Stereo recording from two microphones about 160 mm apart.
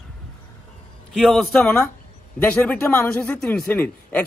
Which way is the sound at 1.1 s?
Centre (ahead or behind).